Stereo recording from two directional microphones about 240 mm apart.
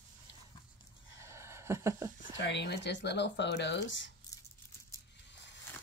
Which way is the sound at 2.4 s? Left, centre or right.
Left.